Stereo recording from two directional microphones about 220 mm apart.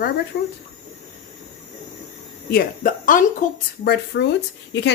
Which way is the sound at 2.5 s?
40° left (ahead or behind).